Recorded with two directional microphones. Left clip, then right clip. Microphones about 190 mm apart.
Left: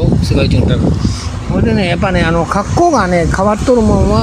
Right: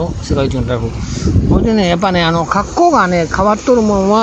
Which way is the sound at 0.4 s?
20° right (ahead or behind).